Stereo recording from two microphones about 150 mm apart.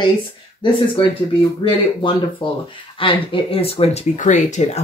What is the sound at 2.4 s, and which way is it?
Speech, 35° left (ahead or behind).